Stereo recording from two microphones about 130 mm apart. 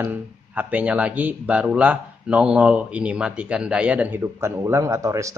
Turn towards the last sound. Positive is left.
turn(degrees=-25)  # may be behind; listen again after turning